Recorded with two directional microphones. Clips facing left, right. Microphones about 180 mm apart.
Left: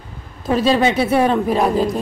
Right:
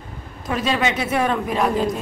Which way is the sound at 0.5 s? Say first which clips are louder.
Left 6 dB; 30° left (ahead or behind).